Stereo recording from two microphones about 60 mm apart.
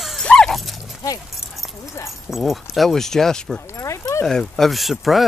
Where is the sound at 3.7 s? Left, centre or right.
Left.